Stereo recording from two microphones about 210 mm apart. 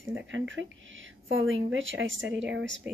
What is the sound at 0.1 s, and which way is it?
Speech, 65° right (ahead or behind).